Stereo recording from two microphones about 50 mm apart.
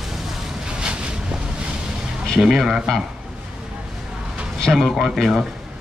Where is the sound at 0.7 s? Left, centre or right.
Centre.